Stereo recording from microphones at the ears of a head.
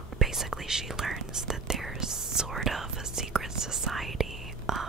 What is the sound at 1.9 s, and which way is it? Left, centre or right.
Whispering, right.